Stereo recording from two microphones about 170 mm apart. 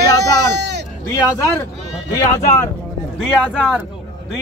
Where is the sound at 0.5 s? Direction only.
80° right.